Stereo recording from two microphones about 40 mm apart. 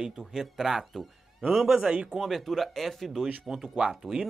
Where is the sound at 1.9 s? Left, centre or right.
Right.